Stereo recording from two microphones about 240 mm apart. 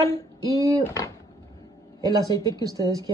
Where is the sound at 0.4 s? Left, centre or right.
Centre.